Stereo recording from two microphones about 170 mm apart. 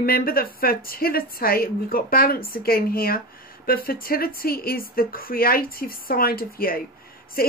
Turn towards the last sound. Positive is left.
turn(degrees=60)  # may be behind; listen again after turning